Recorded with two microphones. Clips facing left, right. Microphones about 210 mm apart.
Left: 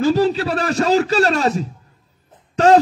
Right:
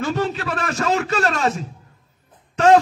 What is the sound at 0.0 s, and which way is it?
A man's voice, 35° left (ahead or behind).